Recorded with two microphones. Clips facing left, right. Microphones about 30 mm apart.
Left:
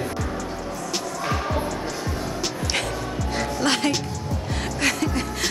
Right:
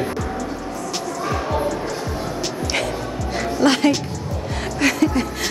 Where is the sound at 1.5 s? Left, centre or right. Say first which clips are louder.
Right 4 dB; centre.